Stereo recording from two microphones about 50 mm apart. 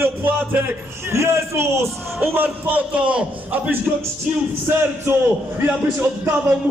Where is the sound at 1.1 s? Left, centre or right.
Right.